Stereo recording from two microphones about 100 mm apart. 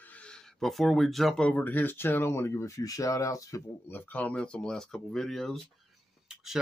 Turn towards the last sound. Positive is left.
turn(degrees=5)  # may be behind; listen again after turning